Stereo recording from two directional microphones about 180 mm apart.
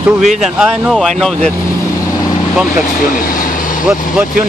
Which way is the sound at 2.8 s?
50° left (ahead or behind).